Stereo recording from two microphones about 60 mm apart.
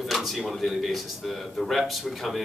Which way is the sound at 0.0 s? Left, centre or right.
Centre.